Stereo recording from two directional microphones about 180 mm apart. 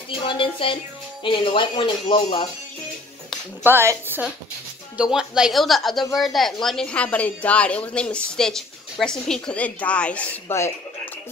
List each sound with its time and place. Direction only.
0.2 s speech: 30° left (ahead or behind)
3.6 s a woman's voice: 15° right (ahead or behind); by 10.7 s 10° left (ahead or behind)